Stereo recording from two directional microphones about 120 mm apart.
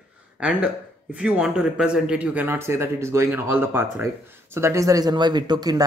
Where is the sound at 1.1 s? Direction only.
10° right (ahead or behind).